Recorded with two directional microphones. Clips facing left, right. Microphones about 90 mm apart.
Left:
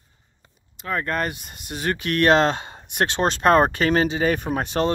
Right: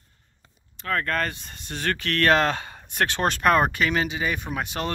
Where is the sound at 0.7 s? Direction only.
15° left (ahead or behind); by 4.8 s 35° left (ahead or behind).